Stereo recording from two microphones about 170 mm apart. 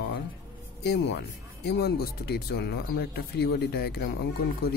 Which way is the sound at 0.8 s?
80° left.